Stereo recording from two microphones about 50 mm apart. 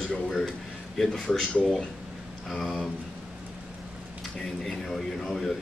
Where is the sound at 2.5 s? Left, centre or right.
Centre.